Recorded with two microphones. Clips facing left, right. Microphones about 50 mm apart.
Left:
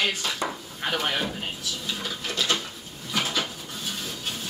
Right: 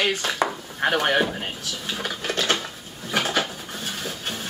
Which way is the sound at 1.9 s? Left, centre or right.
Right.